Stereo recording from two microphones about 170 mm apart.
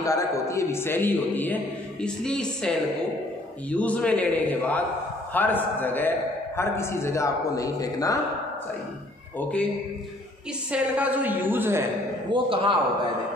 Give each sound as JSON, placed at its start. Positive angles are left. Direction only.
{"t": 0.0, "sound": "a man's voice", "side_deg": 20}
{"t": 9.4, "sound": "a man's voice", "side_deg": 5}
{"t": 10.7, "sound": "a woman's voice", "side_deg": -10}
{"t": 12.3, "sound": "a man's voice", "side_deg": -30}